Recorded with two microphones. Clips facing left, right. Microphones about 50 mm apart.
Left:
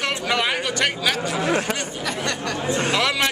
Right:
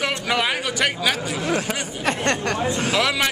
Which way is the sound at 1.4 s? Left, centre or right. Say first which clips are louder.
Left 3 dB; centre.